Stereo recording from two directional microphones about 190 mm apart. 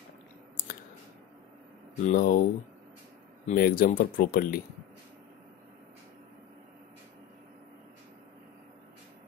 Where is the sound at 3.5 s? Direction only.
50° left (ahead or behind).